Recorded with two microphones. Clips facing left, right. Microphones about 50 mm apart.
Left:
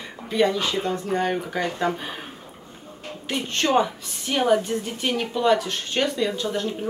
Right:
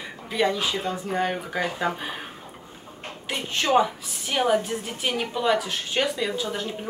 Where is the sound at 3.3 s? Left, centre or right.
Centre.